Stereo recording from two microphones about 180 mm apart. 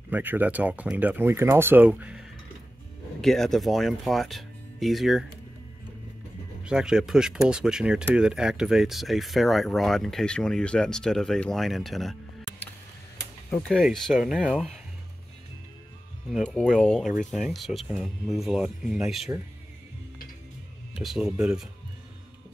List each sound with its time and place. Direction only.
0.1 s speech: 10° right (ahead or behind)
6.6 s speech: 5° right (ahead or behind)
13.7 s speech: centre (ahead or behind)
16.3 s speech: centre (ahead or behind)
21.0 s speech: centre (ahead or behind)